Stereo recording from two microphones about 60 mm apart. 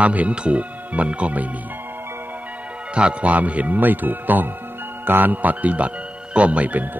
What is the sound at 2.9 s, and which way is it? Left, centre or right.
Speech, right.